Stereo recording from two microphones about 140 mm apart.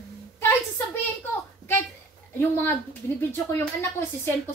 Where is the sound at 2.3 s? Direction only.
15° left (ahead or behind).